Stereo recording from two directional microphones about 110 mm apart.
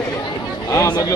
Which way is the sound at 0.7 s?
35° left (ahead or behind).